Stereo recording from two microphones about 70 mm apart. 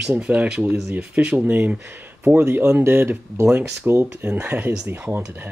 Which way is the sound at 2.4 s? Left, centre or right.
Right.